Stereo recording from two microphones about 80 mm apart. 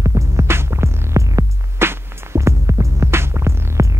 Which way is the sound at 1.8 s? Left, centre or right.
Right.